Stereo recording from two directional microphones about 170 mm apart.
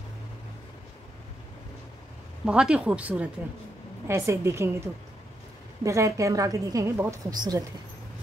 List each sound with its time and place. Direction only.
2.4 s a woman's voice: 5° right (ahead or behind)
5.9 s a woman's voice: 20° right (ahead or behind)